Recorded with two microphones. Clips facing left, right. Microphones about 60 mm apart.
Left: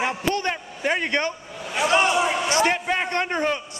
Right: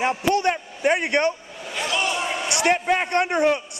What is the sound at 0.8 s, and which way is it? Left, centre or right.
Speech, centre.